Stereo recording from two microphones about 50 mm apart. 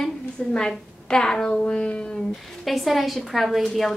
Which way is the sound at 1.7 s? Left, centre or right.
Left.